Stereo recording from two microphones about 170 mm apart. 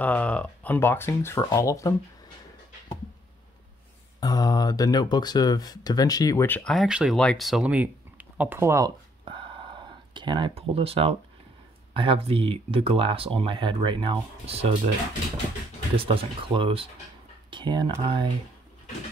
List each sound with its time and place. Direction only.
0.0 s speech: 10° left (ahead or behind)
4.2 s speech: 20° left (ahead or behind); by 8.9 s 15° right (ahead or behind)
9.2 s a sound: 30° right (ahead or behind)
11.9 s speech: 30° right (ahead or behind)
16.0 s speech: 30° right (ahead or behind)